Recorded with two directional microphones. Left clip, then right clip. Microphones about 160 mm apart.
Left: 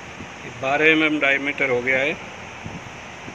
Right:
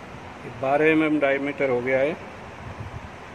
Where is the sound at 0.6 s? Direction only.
25° right (ahead or behind).